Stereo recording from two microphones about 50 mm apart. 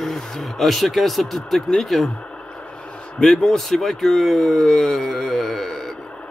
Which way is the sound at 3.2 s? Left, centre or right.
Centre.